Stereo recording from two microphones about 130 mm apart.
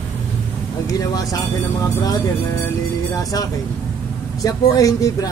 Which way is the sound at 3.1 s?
30° left (ahead or behind).